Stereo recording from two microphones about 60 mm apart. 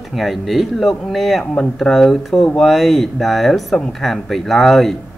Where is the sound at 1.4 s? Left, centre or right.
Centre.